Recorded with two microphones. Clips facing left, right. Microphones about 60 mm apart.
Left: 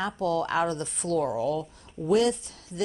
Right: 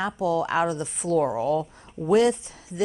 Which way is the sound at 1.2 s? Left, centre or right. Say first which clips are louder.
Right 4 dB; right.